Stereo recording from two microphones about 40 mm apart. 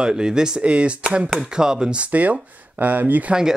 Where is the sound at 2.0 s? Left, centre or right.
Right.